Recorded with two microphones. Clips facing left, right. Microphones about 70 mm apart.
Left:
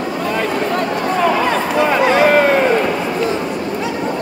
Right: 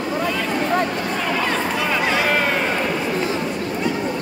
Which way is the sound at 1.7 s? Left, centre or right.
Left.